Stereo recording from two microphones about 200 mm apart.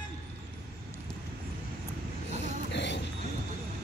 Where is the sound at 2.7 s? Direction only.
60° left (ahead or behind).